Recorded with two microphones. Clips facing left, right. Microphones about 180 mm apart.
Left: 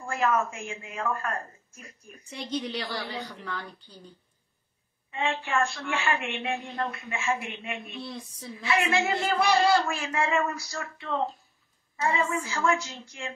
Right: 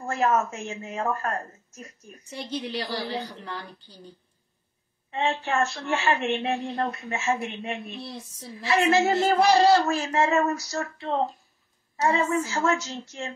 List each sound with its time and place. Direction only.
0.0 s a woman's voice: 40° right (ahead or behind)
2.5 s a woman's voice: 30° right (ahead or behind)
5.1 s a woman's voice: 35° right (ahead or behind)